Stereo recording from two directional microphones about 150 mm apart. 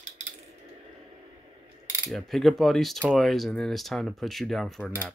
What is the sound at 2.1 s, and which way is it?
Speech, centre (ahead or behind).